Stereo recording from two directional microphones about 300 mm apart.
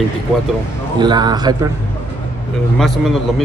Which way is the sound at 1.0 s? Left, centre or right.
Centre.